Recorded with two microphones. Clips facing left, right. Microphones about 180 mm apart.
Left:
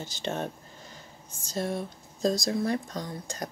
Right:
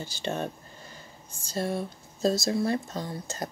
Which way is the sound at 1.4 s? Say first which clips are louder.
Right 1 dB; 20° left (ahead or behind).